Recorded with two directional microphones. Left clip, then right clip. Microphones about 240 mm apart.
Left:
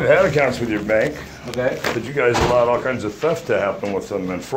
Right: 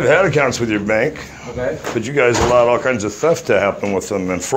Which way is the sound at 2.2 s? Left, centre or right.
Right.